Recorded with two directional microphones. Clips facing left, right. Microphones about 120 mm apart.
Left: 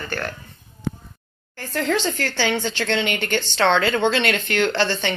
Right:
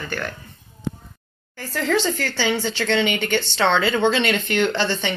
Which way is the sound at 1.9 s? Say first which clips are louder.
Right 3 dB; 10° right (ahead or behind).